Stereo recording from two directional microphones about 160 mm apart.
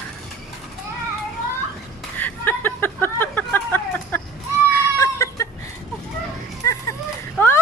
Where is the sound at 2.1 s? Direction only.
10° left (ahead or behind).